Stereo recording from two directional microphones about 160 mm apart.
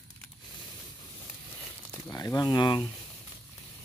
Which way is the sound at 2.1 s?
20° left (ahead or behind).